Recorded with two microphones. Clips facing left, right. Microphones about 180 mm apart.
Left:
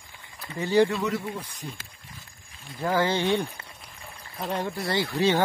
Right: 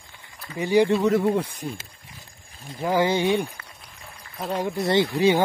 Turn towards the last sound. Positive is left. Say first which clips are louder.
# right 5 dB
turn(degrees=-15)  # may be behind; listen again after turning